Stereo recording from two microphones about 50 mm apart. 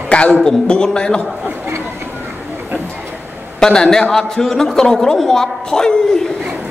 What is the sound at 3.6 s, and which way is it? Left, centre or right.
A man's voice, centre.